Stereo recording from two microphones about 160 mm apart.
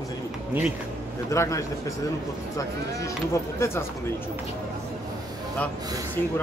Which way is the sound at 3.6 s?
15° left (ahead or behind).